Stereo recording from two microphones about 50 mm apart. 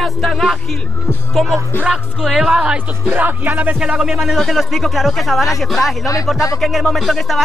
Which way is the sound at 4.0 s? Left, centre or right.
Centre.